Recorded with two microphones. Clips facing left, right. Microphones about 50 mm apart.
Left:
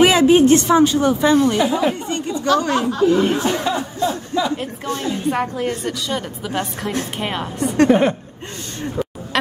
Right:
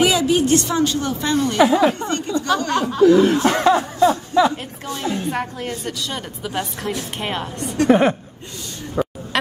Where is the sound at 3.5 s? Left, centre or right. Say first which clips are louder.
Right 4 dB; right.